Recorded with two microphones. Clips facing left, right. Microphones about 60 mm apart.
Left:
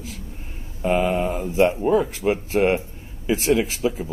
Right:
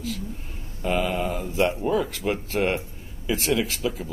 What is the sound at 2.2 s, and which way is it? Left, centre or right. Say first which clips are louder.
Speech: left 5 dB; centre.